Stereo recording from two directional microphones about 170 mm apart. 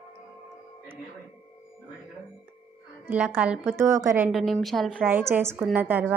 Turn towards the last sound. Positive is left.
turn(degrees=-10)  # may be behind; listen again after turning